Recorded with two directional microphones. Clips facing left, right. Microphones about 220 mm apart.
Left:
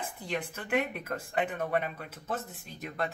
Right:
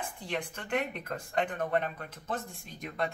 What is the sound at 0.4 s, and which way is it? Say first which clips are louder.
Speech: left 2 dB; 5° left (ahead or behind).